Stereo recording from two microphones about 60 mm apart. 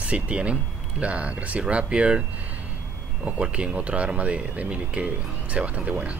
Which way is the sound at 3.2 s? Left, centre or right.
Centre.